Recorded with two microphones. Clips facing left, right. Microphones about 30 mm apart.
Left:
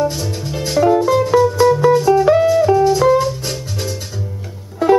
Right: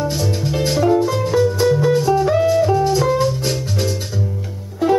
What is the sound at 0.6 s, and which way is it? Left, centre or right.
Music, centre.